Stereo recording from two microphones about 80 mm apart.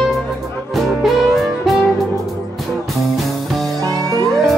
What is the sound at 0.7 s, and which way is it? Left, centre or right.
Music, centre.